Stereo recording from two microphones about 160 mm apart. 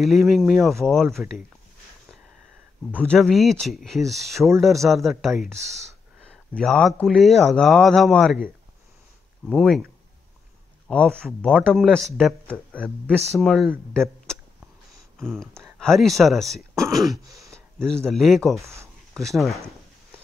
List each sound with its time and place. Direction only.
0.0 s speech: centre (ahead or behind)
3.0 s speech: 5° left (ahead or behind)
6.5 s speech: 5° left (ahead or behind)
9.5 s speech: centre (ahead or behind)
10.9 s speech: 5° left (ahead or behind)
13.9 s a sound: 5° left (ahead or behind)
15.1 s speech: 5° left (ahead or behind)
17.1 s throat clearing: 20° right (ahead or behind)
17.5 s speech: 5° left (ahead or behind)